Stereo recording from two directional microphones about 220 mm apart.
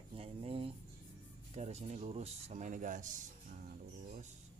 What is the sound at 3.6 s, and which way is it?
Music, 35° right (ahead or behind).